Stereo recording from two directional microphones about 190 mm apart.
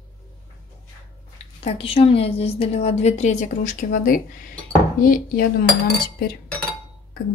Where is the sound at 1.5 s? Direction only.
30° left (ahead or behind); by 5.4 s 50° left (ahead or behind).